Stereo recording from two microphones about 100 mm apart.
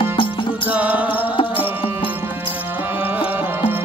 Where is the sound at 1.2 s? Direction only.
60° left (ahead or behind).